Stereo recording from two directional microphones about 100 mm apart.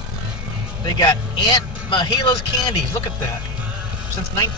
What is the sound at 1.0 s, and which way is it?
Speech, 45° left (ahead or behind).